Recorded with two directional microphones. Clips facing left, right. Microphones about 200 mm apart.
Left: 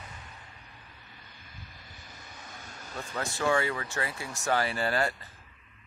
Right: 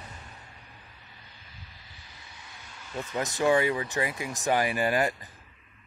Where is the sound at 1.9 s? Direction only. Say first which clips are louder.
Left 3 dB; 45° left (ahead or behind).